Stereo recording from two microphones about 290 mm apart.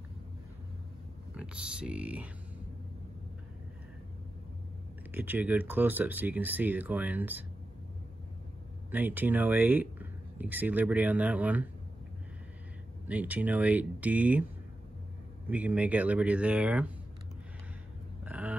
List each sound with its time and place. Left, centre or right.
1.3 s speech: centre
5.1 s speech: centre
8.9 s speech: centre
13.1 s speech: centre
15.4 s speech: centre
18.2 s a sound: centre